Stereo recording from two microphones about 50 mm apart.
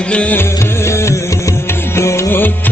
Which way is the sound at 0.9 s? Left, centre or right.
Left.